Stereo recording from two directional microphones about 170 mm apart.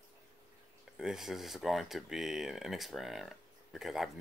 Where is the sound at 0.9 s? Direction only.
Centre (ahead or behind).